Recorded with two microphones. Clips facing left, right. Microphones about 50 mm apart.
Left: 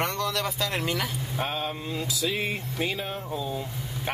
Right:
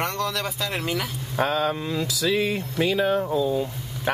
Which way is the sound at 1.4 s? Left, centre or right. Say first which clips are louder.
Right 8 dB; right.